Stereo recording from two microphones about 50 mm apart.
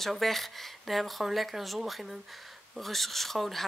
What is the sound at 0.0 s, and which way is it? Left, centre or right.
Speech, centre.